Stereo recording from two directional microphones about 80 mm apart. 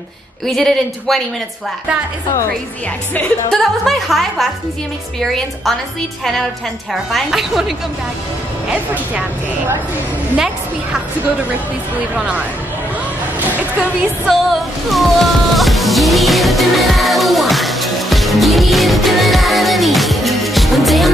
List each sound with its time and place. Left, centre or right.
0.5 s a woman's voice: centre
3.2 s speech: centre
3.8 s a woman's voice: centre
6.9 s a woman's voice: centre
8.6 s a woman's voice: centre
10.3 s a woman's voice: centre
14.2 s music: centre